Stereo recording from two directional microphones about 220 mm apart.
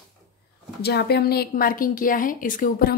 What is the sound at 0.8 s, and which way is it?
Speech, 45° left (ahead or behind).